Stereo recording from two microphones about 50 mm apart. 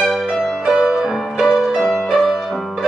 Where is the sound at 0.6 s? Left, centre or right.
Centre.